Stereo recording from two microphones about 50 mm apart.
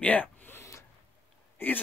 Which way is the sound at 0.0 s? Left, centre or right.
Left.